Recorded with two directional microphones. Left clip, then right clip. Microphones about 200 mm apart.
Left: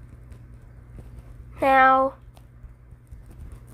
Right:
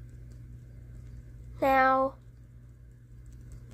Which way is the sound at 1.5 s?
10° left (ahead or behind).